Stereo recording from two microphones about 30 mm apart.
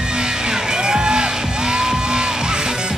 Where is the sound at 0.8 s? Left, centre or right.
Right.